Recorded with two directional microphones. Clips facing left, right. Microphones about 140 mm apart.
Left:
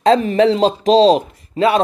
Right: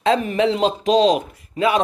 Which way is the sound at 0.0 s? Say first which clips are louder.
Left 5 dB; 35° left (ahead or behind).